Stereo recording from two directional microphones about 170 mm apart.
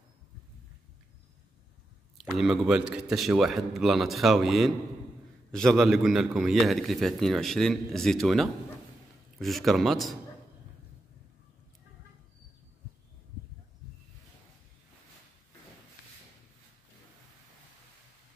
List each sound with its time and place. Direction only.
2.1 s a man's voice: centre (ahead or behind)